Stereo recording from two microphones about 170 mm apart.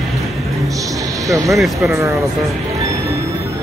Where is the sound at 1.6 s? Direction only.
Centre (ahead or behind).